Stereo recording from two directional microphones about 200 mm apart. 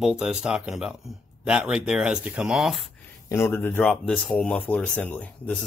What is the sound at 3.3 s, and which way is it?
Speech, 10° left (ahead or behind).